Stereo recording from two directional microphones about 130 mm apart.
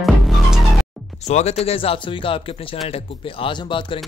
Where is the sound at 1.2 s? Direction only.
55° left (ahead or behind).